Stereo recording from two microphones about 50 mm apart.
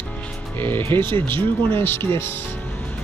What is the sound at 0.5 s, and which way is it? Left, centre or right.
Speech, left.